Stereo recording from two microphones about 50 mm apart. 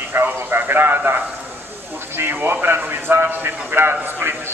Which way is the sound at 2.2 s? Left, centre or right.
Right.